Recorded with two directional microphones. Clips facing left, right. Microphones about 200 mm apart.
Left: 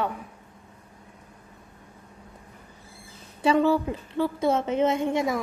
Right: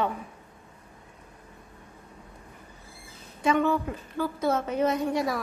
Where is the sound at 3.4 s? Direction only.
30° left (ahead or behind).